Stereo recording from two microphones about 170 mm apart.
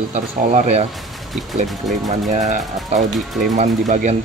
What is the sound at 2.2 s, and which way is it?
Speech, 45° right (ahead or behind).